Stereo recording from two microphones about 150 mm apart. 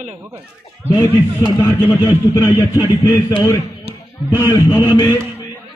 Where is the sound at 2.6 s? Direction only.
30° left (ahead or behind).